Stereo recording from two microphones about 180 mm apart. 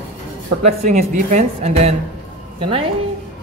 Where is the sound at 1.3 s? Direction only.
35° right (ahead or behind).